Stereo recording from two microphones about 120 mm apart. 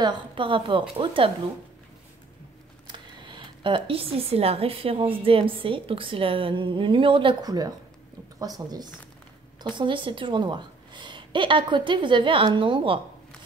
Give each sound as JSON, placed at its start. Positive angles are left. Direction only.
{"t": 0.0, "sound": "speech", "side_deg": -45}
{"t": 2.9, "sound": "speech", "side_deg": -40}
{"t": 7.4, "sound": "a woman's voice", "side_deg": -30}